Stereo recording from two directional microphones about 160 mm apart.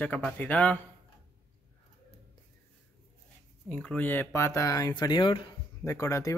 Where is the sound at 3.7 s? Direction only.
10° left (ahead or behind); by 5.4 s 30° left (ahead or behind).